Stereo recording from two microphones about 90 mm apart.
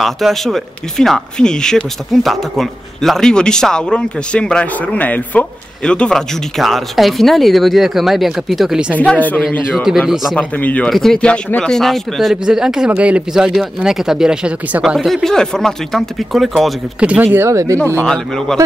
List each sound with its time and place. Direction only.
0.0 s speech: centre (ahead or behind)
8.9 s speech: 15° left (ahead or behind)
9.8 s speech: 5° right (ahead or behind)
10.3 s speech: 15° left (ahead or behind)
10.9 s speech: centre (ahead or behind)
11.1 s speech: 10° left (ahead or behind)
17.2 s speech: 25° right (ahead or behind)
18.0 s speech: 10° left (ahead or behind)